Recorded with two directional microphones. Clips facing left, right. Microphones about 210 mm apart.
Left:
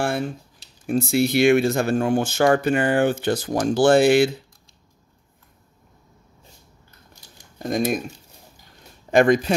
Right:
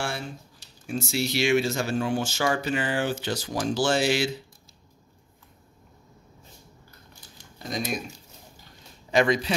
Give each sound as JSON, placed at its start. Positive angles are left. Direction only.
{"t": 0.8, "sound": "speech", "side_deg": 55}
{"t": 7.5, "sound": "speech", "side_deg": 50}
{"t": 9.1, "sound": "speech", "side_deg": 50}